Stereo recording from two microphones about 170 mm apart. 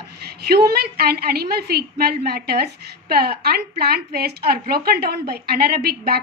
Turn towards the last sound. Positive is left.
turn(degrees=-65)  # may be behind; listen again after turning